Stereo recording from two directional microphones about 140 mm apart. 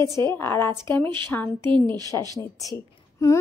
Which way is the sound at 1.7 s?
30° right (ahead or behind).